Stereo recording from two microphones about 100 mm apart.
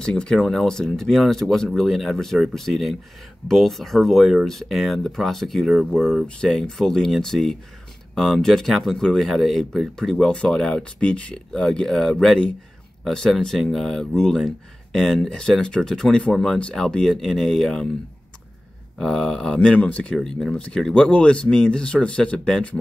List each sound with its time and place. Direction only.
0.0 s speech: 10° left (ahead or behind)
18.9 s speech: 5° left (ahead or behind)